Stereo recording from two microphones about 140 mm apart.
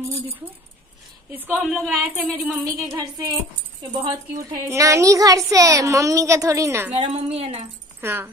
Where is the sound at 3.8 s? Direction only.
30° right (ahead or behind).